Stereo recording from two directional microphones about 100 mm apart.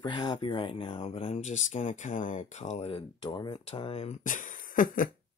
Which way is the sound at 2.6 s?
70° left (ahead or behind).